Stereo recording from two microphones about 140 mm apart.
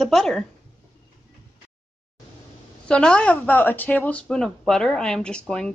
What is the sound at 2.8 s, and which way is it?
Speech, 5° left (ahead or behind).